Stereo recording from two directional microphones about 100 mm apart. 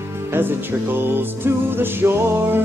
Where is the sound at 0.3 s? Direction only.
20° right (ahead or behind).